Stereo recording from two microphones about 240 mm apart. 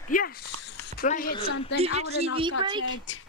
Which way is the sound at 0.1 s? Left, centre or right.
Left.